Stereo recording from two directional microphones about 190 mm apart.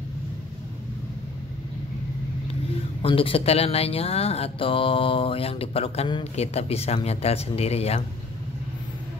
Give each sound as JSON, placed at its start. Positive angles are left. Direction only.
{"t": 3.0, "sound": "speech", "side_deg": 30}